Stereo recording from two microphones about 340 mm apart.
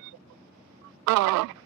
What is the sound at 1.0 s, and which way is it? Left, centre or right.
Fowl, right.